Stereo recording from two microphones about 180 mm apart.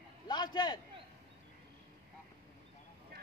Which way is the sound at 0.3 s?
25° left (ahead or behind).